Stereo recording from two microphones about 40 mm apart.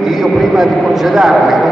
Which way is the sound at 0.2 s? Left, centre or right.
Centre.